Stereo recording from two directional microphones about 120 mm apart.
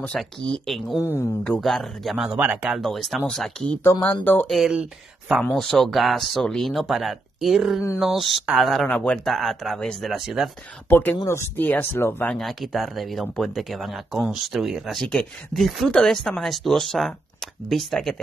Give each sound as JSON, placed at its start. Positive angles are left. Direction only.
{"t": 0.0, "sound": "speech", "side_deg": 5}
{"t": 0.9, "sound": "speech", "side_deg": 20}
{"t": 1.6, "sound": "speech", "side_deg": 0}
{"t": 4.5, "sound": "speech", "side_deg": -5}
{"t": 8.8, "sound": "speech", "side_deg": 10}
{"t": 10.9, "sound": "speech", "side_deg": 15}
{"t": 12.4, "sound": "speech", "side_deg": 0}